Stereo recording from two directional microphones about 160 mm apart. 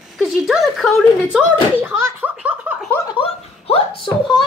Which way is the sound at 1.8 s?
15° right (ahead or behind).